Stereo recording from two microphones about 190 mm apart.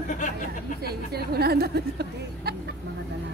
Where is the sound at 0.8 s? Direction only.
55° right (ahead or behind).